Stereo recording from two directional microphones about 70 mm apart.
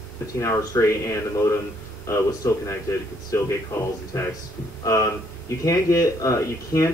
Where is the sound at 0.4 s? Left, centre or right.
Left.